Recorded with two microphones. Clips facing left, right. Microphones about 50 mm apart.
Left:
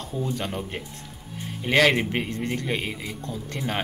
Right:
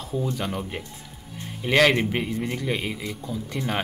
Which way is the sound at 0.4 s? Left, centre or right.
Centre.